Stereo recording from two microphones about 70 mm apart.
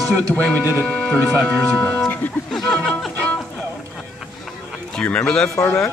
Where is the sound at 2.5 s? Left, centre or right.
Centre.